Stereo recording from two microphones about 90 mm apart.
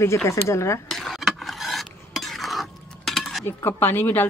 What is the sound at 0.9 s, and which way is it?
Stir, centre (ahead or behind).